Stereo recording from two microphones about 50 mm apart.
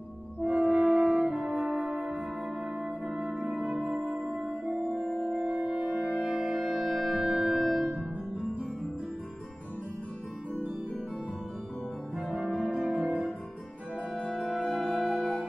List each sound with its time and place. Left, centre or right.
0.5 s french horn: centre
2.8 s music: centre
5.3 s music: centre
12.2 s music: centre